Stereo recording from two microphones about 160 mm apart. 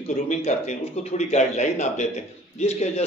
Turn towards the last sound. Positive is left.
turn(degrees=40)  # may be behind; listen again after turning